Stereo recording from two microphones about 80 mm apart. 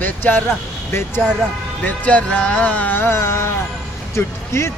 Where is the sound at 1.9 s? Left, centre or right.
Centre; by 4.7 s left.